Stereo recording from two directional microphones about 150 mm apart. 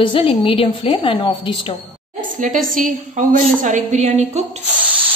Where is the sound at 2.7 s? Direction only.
65° right (ahead or behind); by 4.6 s 50° right (ahead or behind).